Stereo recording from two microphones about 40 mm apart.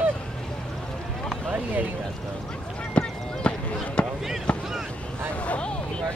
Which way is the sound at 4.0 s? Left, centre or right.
Left.